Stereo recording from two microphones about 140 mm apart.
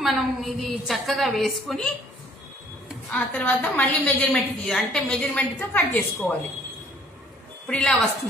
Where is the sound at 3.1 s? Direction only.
10° left (ahead or behind).